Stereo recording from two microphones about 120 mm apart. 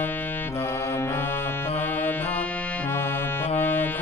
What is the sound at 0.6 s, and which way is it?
Music, 20° left (ahead or behind).